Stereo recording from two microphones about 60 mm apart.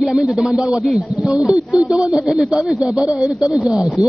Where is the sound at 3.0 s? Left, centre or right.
Left.